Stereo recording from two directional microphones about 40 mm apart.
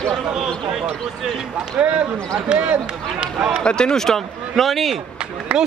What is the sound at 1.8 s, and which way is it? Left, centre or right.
Speech, right.